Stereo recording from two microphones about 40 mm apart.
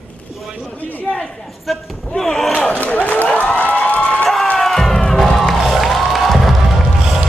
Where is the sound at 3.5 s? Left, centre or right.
Left.